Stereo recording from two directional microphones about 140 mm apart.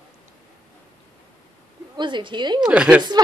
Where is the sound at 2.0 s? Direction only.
35° right (ahead or behind).